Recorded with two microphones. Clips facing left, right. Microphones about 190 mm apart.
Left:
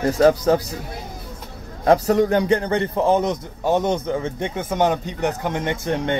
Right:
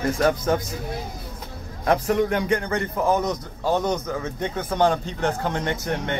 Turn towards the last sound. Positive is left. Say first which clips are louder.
# left 4 dB
turn(degrees=20)  # may be behind; listen again after turning